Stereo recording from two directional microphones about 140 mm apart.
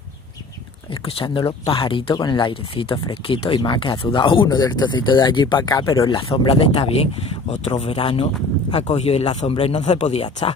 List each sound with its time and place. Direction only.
1.0 s speech: 40° left (ahead or behind)